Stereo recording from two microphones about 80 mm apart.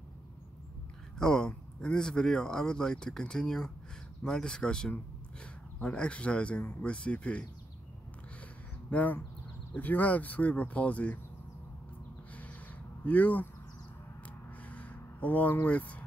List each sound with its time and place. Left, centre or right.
1.2 s speech: centre
8.9 s speech: centre
13.0 s speech: centre
14.7 s a sound: centre